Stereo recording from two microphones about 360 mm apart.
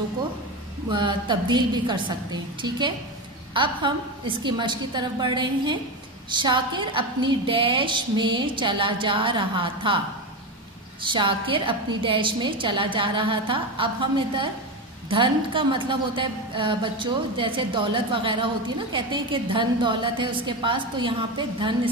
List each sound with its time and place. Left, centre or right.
0.8 s a woman's voice: centre
3.5 s a woman's voice: centre
11.0 s a woman's voice: centre